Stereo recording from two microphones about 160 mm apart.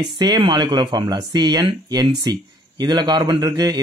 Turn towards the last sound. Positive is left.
turn(degrees=-25)  # may be behind; listen again after turning